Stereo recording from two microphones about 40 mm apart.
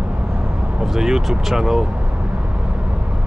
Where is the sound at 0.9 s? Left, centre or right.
Centre.